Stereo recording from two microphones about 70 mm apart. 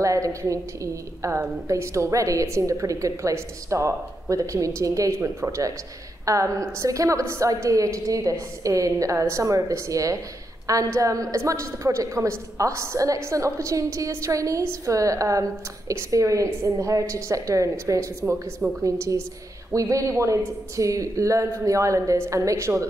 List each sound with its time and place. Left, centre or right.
0.0 s a woman's voice: right